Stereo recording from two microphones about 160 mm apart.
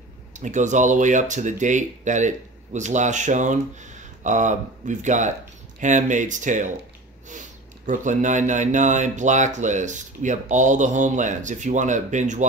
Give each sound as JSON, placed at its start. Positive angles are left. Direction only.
{"t": 0.3, "sound": "speech", "side_deg": -50}